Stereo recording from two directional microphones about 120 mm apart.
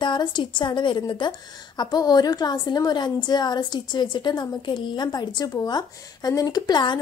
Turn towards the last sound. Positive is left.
turn(degrees=40)  # may be behind; listen again after turning